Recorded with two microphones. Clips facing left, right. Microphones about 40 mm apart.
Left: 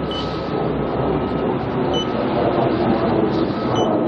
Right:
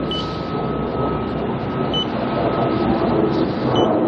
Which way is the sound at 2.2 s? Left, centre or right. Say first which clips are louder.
Left 2 dB; centre.